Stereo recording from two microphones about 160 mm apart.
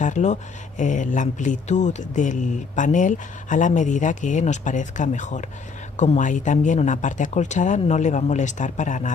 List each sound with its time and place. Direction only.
0.0 s speech: 45° left (ahead or behind)